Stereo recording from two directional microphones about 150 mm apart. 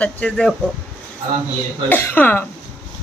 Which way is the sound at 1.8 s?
15° left (ahead or behind).